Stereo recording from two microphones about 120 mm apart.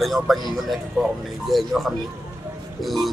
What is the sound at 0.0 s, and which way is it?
Speech, centre (ahead or behind).